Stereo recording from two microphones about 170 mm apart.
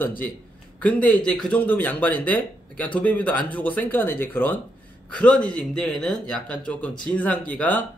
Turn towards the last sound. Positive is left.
turn(degrees=10)  # may be behind; listen again after turning